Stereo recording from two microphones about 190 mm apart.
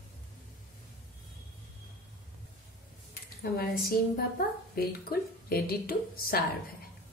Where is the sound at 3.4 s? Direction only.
55° left (ahead or behind).